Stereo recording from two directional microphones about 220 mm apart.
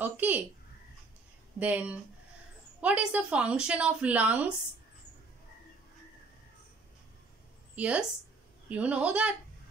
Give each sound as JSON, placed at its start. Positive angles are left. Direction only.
{"t": 0.0, "sound": "a sound", "side_deg": -5}
{"t": 1.6, "sound": "a woman's voice", "side_deg": -5}
{"t": 7.7, "sound": "a woman's voice", "side_deg": -5}